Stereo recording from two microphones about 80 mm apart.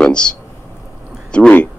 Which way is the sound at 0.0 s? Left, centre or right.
Centre.